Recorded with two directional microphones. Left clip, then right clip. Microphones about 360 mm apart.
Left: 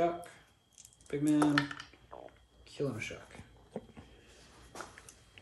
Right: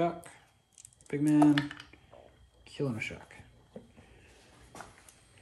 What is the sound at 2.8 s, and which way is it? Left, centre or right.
Speech, centre.